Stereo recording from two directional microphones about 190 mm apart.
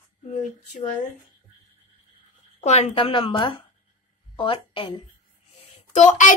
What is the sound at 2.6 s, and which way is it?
A woman's voice, 35° left (ahead or behind).